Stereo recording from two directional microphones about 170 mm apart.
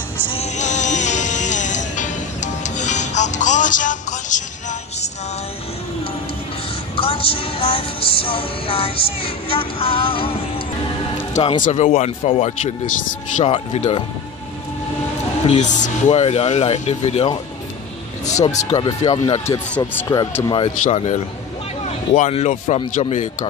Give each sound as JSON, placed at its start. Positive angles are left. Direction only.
{"t": 0.3, "sound": "music", "side_deg": 40}
{"t": 7.0, "sound": "music", "side_deg": 35}
{"t": 15.5, "sound": "music", "side_deg": 45}
{"t": 18.5, "sound": "music", "side_deg": 35}
{"t": 18.9, "sound": "speech", "side_deg": 20}
{"t": 20.9, "sound": "music", "side_deg": 40}
{"t": 21.8, "sound": "speech", "side_deg": 40}